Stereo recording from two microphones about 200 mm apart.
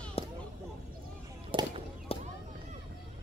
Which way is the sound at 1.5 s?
25° right (ahead or behind).